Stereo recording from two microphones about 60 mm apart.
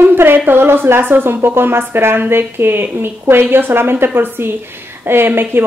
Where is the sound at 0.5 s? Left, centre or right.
Right.